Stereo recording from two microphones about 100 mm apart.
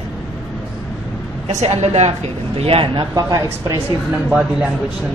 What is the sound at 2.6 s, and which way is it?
Speech, 85° right.